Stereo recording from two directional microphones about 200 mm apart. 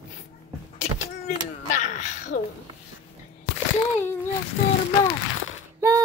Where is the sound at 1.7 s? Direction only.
35° left (ahead or behind).